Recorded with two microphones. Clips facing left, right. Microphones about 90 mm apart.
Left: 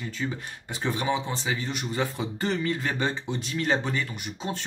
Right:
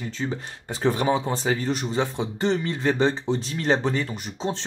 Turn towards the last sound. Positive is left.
turn(degrees=-30)  # may be behind; listen again after turning